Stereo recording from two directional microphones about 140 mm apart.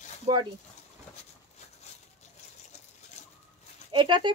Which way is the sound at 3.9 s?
35° right (ahead or behind).